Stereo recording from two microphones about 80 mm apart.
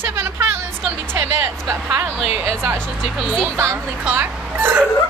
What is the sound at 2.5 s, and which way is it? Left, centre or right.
Speech, right.